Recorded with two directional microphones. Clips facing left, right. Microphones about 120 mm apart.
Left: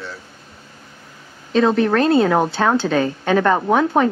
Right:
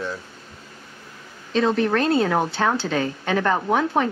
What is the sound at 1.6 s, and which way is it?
Speech, 45° left (ahead or behind).